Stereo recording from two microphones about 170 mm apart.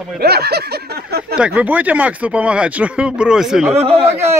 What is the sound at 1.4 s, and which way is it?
Speech, 5° right (ahead or behind).